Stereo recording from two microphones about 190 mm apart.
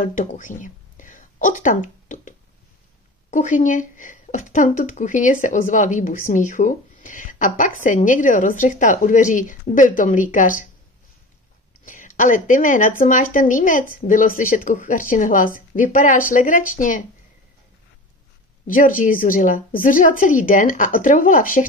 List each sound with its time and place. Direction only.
0.0 s speech: 45° left (ahead or behind)
11.8 s speech: 45° left (ahead or behind)
18.7 s speech: 45° left (ahead or behind)